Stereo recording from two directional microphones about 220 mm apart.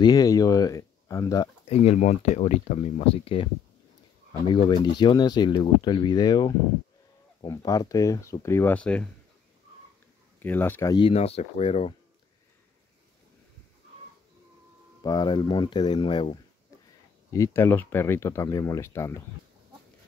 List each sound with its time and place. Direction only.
0.0 s speech: 15° left (ahead or behind)
1.7 s speech: 30° left (ahead or behind)
4.5 s speech: 20° left (ahead or behind); by 9.1 s 5° left (ahead or behind)
10.4 s speech: 10° left (ahead or behind); by 11.9 s 25° left (ahead or behind)
15.0 s speech: 20° left (ahead or behind)